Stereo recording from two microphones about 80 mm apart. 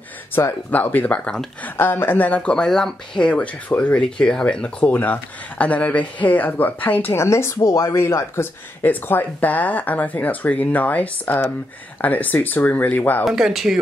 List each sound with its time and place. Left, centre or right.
0.7 s speech: left
1.6 s speech: left
7.2 s speech: left
13.2 s speech: centre